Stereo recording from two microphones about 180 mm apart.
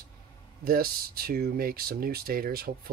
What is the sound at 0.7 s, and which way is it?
Speech, 55° right (ahead or behind).